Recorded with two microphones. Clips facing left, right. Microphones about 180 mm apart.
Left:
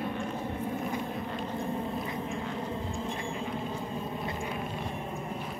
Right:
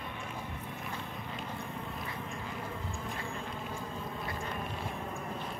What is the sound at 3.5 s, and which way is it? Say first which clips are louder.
Vehicle: left 5 dB; 20° left (ahead or behind).